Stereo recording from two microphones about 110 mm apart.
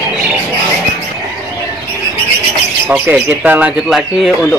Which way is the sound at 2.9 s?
10° right (ahead or behind).